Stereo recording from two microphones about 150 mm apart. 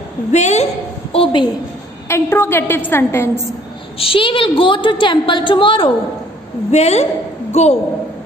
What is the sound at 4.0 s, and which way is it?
A woman's voice, 35° left (ahead or behind).